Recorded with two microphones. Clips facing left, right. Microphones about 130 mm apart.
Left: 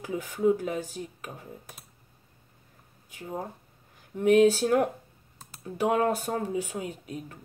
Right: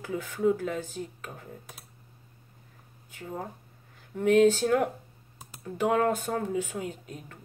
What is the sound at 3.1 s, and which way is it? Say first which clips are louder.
Speech: left 2 dB; 20° left (ahead or behind).